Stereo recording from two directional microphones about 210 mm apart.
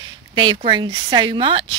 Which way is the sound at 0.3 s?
25° right (ahead or behind).